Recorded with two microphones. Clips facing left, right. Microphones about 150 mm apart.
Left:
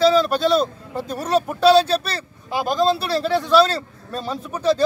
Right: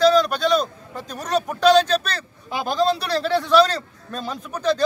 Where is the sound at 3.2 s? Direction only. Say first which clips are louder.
Even; 5° left (ahead or behind).